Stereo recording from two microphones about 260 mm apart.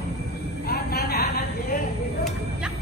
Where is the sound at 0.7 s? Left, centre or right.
Left.